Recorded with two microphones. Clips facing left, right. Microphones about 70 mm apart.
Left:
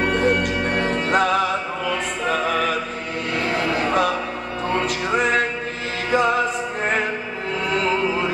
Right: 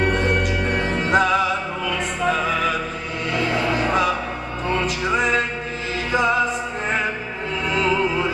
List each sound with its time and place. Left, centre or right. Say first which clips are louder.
1.1 s music: right 2 dB; left
3.3 s music: right 1 dB; left